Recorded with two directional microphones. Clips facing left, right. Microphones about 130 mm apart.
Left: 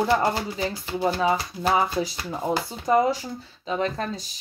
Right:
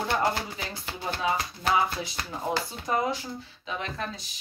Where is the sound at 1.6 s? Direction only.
40° left (ahead or behind).